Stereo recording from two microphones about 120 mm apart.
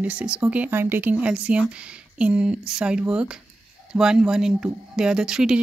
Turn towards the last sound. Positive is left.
turn(degrees=-5)  # may be behind; listen again after turning